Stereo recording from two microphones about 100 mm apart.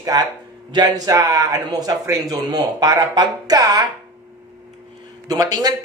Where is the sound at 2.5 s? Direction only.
40° right (ahead or behind).